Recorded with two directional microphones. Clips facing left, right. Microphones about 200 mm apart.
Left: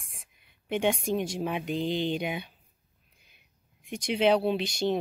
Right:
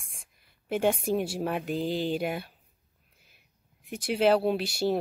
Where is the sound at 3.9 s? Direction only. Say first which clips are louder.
Right 1 dB; 5° right (ahead or behind).